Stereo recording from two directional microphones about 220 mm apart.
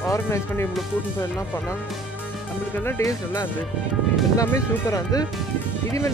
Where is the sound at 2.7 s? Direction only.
10° left (ahead or behind).